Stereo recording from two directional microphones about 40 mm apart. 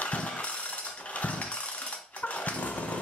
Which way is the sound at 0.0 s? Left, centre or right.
Left.